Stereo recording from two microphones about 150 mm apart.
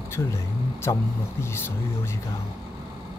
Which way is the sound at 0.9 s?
20° left (ahead or behind).